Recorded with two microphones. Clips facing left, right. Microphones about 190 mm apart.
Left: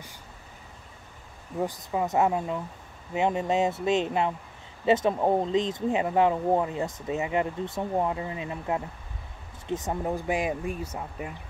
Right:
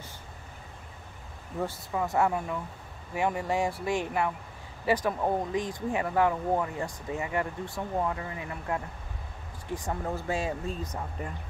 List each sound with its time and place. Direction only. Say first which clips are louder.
1.6 s speech: left 3 dB; 15° left (ahead or behind)